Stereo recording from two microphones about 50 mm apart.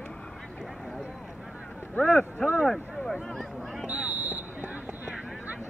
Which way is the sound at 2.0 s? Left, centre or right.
Centre.